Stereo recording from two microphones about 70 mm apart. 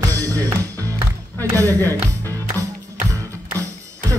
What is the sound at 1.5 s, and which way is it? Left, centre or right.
Speech, left.